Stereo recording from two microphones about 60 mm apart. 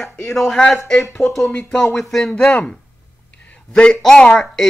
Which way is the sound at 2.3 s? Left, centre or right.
Centre.